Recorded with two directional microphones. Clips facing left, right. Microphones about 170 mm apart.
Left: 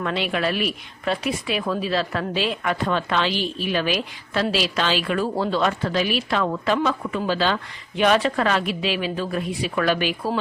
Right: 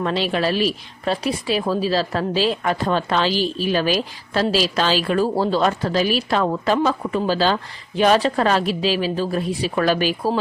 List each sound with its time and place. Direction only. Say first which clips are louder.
0.0 s a woman's voice: right 3 dB; 30° right (ahead or behind)